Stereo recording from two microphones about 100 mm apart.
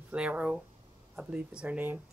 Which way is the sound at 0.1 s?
10° right (ahead or behind).